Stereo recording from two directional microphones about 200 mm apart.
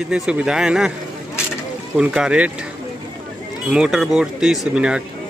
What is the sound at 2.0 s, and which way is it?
Speech, 5° right (ahead or behind).